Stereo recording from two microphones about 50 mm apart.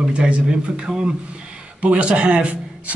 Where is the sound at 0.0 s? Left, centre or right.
Centre.